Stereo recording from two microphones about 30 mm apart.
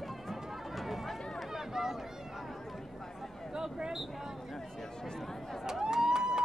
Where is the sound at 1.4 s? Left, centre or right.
Centre.